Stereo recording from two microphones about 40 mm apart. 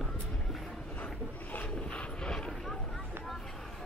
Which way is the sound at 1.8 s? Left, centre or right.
Left.